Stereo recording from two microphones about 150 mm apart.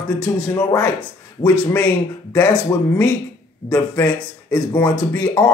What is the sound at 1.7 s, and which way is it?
Speech, 10° left (ahead or behind).